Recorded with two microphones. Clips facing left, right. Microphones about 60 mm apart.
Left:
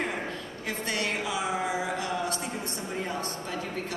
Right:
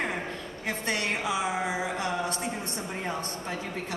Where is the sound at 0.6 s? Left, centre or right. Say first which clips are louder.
Right 1 dB; right.